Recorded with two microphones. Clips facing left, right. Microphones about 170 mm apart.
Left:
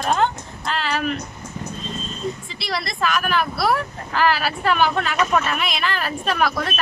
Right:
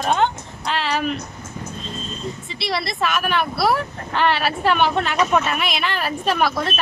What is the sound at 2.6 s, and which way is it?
Speech, centre (ahead or behind).